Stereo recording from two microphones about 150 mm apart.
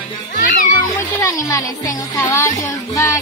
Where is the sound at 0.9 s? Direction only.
20° left (ahead or behind).